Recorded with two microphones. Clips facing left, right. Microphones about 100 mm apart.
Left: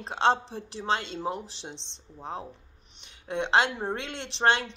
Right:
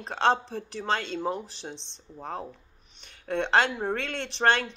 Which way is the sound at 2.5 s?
20° left (ahead or behind).